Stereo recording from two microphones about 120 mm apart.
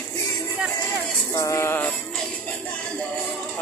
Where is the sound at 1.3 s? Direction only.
25° left (ahead or behind).